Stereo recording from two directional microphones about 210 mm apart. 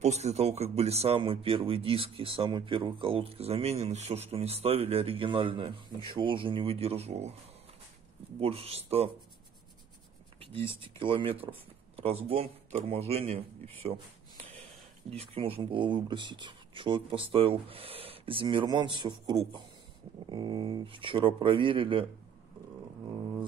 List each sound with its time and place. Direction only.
0.0 s speech: 30° right (ahead or behind)
8.4 s speech: 30° right (ahead or behind)
10.8 s speech: 25° right (ahead or behind)